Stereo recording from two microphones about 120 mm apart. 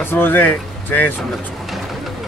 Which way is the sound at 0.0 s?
15° left (ahead or behind).